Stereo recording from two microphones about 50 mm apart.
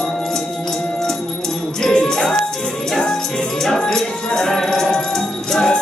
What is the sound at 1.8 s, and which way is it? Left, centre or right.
Music, centre.